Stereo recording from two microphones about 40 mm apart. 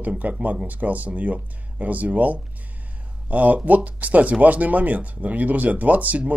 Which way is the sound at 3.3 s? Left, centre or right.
Right.